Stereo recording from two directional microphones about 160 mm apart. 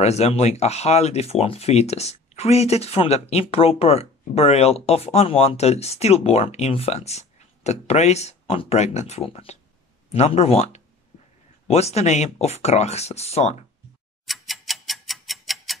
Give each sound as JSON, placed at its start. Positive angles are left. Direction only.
{"t": 0.0, "sound": "speech", "side_deg": 40}
{"t": 14.2, "sound": "tick-tock", "side_deg": 0}